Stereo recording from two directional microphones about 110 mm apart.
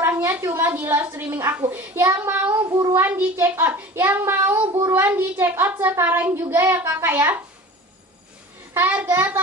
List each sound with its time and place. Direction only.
0.0 s a woman's voice: 20° right (ahead or behind)
8.7 s a child's voice: 20° right (ahead or behind)